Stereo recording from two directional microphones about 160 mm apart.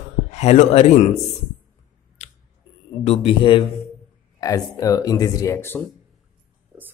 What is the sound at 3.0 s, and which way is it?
Speech, 40° left (ahead or behind).